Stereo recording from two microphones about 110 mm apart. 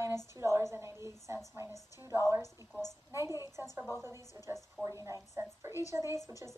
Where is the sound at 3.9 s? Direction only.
25° right (ahead or behind).